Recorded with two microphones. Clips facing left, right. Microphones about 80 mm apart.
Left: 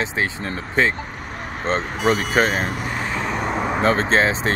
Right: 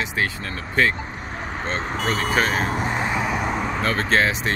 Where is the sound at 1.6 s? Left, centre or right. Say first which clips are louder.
Left 6 dB; left.